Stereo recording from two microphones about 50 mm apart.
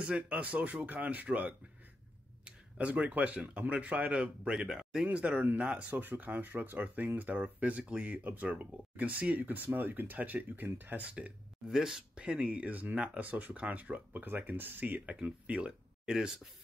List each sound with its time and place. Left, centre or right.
0.3 s speech: right; by 5.0 s centre
5.0 s speech: right
11.0 s speech: right
11.6 s speech: centre; by 15.1 s right
15.4 s speech: right